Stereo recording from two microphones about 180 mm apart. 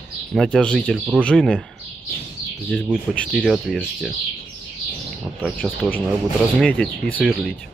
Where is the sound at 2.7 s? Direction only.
Centre (ahead or behind).